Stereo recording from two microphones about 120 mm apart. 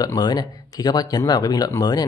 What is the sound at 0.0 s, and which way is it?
Speech, 35° left (ahead or behind).